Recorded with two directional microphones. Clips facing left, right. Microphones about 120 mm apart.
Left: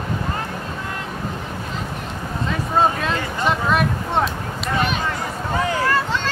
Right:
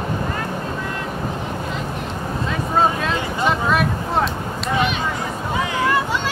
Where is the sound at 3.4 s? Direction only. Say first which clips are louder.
Even; centre (ahead or behind).